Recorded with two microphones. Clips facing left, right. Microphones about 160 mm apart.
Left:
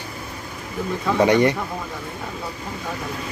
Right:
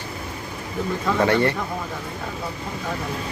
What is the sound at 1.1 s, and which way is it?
Speech, 15° left (ahead or behind).